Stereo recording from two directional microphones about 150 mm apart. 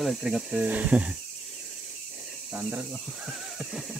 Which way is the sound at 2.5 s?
5° right (ahead or behind).